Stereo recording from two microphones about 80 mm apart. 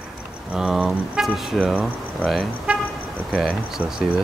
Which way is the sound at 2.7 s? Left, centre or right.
Centre.